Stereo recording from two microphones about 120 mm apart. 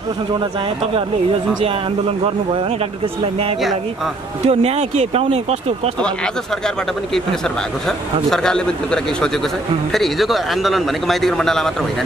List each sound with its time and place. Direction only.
1.6 s a man's voice: 50° right (ahead or behind)
4.5 s speech: 60° right (ahead or behind)
8.3 s speech: 5° left (ahead or behind)